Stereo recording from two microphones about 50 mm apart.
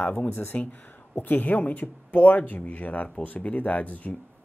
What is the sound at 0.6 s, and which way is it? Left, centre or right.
Speech, left.